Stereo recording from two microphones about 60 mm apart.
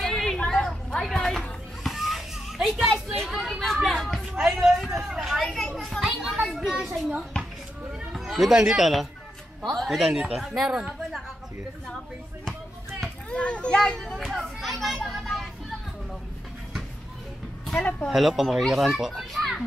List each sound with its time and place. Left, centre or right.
0.0 s a sound: centre
1.8 s children playing: centre
3.3 s a sound: centre
5.4 s a child's voice: centre
8.1 s a child's voice: centre
13.3 s a child's voice: centre
13.7 s children playing: centre
17.7 s speech: left
18.1 s a child's voice: centre